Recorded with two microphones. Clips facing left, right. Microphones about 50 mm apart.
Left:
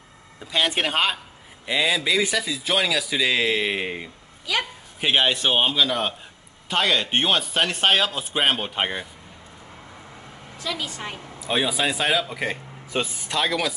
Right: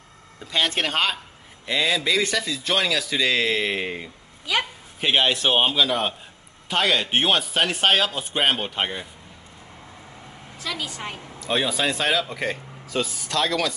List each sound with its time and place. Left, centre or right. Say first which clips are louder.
0.4 s speech: left 1 dB; centre
10.6 s speech: left 1 dB; centre
12.8 s speech: even; left
13.4 s speech: even; centre